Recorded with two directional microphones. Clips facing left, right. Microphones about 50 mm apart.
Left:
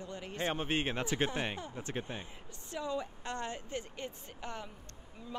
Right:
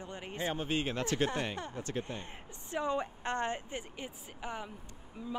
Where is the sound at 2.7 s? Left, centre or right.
Right.